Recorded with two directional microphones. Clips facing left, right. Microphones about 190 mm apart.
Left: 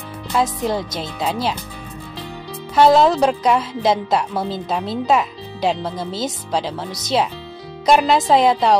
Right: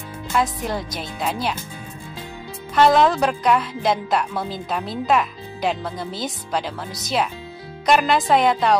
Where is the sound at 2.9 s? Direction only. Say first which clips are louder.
Left 3 dB; 25° left (ahead or behind).